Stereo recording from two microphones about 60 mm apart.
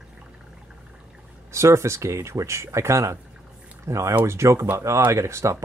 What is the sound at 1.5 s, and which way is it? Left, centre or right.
Speech, right.